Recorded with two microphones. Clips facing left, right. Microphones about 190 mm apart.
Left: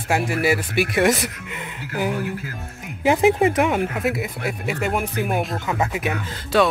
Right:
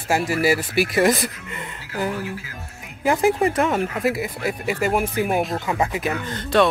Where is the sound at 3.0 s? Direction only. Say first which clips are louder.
Left 2 dB; 20° left (ahead or behind).